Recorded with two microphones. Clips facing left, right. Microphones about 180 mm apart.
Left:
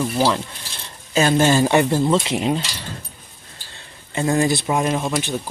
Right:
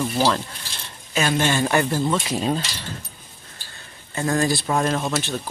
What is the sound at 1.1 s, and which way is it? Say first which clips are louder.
Speech: left 5 dB; 35° left (ahead or behind).